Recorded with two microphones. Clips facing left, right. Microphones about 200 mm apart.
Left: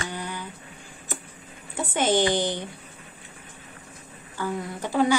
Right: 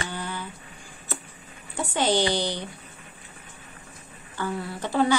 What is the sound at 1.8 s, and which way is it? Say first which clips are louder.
Speech: left 1 dB; 20° left (ahead or behind).